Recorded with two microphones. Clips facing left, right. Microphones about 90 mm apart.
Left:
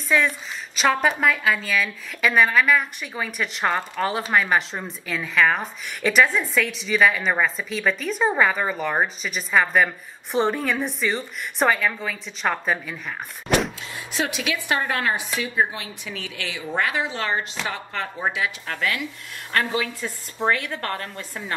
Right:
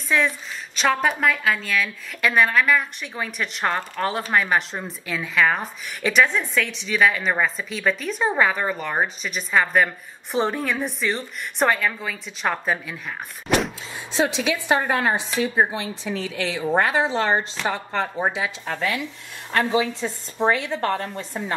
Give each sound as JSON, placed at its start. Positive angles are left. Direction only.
{"t": 0.1, "sound": "a woman's voice", "side_deg": 0}
{"t": 13.5, "sound": "vehicle", "side_deg": 0}
{"t": 14.1, "sound": "a woman's voice", "side_deg": -25}